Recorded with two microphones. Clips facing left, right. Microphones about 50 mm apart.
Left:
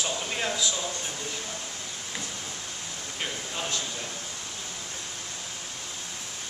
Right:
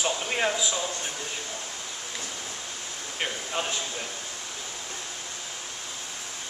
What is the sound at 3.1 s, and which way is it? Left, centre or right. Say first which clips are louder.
Speech: right 4 dB; right.